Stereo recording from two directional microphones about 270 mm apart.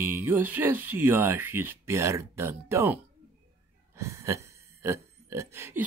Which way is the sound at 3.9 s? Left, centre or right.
Centre.